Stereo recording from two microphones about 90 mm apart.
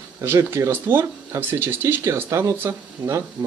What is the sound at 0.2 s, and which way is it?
Speech, 30° right (ahead or behind).